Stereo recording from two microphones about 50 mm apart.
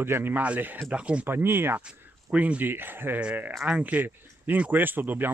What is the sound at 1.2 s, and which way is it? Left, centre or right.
Speech, right.